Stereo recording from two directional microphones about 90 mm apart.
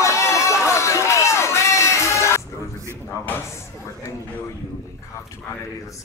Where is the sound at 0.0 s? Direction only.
35° left (ahead or behind).